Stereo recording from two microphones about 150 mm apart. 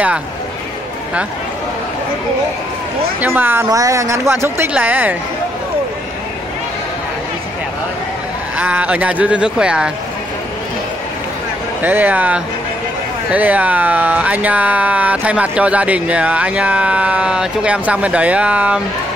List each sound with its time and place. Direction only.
3.2 s speech: 15° right (ahead or behind)
8.5 s speech: 10° right (ahead or behind)
11.8 s speech: 10° right (ahead or behind)